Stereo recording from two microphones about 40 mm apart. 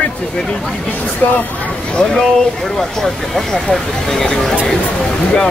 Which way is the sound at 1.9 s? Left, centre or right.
Centre.